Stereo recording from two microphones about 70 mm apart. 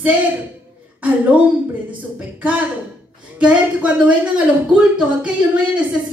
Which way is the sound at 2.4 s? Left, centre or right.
Right.